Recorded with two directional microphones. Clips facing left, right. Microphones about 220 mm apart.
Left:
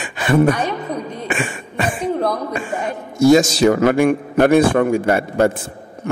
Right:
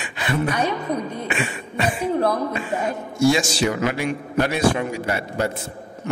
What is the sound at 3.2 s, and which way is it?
A man's voice, 40° left (ahead or behind).